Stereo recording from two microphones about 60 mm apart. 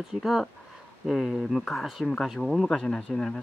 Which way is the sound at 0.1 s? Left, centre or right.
Centre.